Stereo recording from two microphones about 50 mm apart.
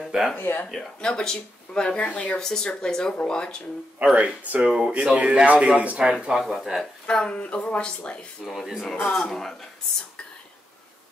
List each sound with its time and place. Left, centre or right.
0.0 s a sound: centre
0.4 s speech: left
0.7 s speech: centre; by 2.3 s left
2.3 s speech: centre
4.0 s a man's voice: centre
6.4 s speech: centre
7.1 s speech: centre
9.1 s speech: centre